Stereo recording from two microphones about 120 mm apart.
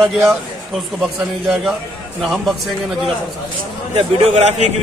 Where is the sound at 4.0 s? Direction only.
55° right (ahead or behind).